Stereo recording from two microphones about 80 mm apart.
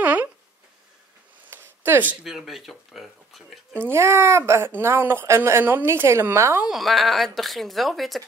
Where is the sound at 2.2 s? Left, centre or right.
Centre.